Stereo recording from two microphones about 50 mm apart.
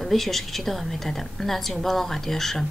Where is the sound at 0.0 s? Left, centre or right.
Centre.